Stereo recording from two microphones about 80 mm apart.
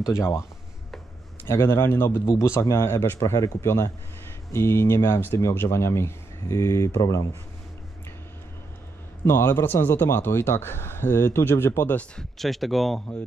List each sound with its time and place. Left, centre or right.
1.5 s speech: left
9.2 s speech: left
12.2 s speech: centre